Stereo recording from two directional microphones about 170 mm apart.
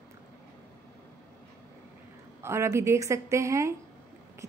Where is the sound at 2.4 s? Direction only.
15° right (ahead or behind).